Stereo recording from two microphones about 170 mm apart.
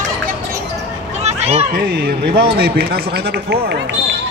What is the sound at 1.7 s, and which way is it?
A man's voice, 65° right (ahead or behind).